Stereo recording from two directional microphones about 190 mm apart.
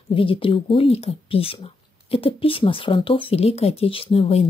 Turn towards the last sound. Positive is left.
turn(degrees=30)  # may be behind; listen again after turning